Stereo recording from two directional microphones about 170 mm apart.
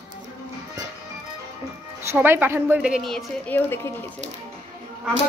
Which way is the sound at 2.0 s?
15° right (ahead or behind).